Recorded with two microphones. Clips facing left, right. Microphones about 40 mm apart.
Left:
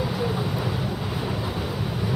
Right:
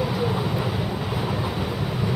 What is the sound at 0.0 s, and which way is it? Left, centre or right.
Vehicle, centre.